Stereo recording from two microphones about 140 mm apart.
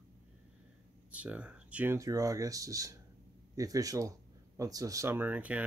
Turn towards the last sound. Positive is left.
turn(degrees=-10)  # may be behind; listen again after turning